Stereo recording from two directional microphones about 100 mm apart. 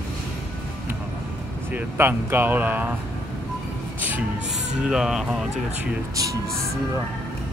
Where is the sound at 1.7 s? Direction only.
20° right (ahead or behind).